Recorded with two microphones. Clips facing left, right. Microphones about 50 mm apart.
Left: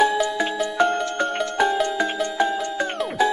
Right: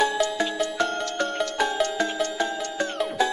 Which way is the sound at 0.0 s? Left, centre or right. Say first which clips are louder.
Left 3 dB; centre.